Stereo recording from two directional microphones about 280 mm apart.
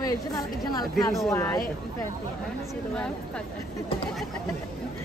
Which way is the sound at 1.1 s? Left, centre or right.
Centre.